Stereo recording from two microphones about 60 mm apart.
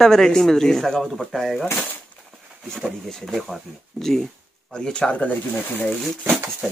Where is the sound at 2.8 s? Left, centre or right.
Centre.